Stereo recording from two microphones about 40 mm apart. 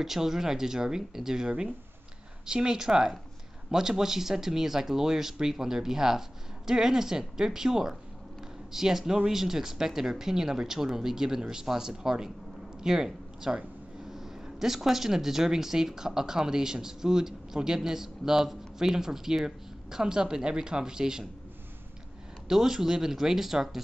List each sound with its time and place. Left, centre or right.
0.0 s a woman's voice: centre
22.5 s speech: centre